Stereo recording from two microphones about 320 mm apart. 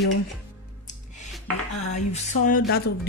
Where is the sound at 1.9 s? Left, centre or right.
Left.